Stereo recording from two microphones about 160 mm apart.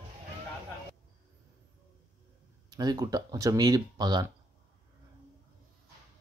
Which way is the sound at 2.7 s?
25° right (ahead or behind).